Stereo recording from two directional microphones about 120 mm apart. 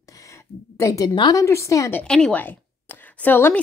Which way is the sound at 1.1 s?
40° left (ahead or behind).